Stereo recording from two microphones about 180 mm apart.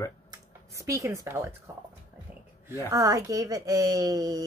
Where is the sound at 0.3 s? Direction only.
15° right (ahead or behind).